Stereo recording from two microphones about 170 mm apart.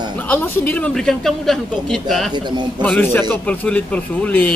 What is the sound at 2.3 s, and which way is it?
Speech, 25° right (ahead or behind).